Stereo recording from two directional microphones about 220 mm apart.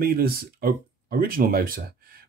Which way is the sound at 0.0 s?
45° right (ahead or behind).